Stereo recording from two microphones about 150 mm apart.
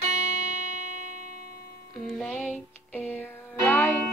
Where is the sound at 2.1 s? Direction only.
5° left (ahead or behind).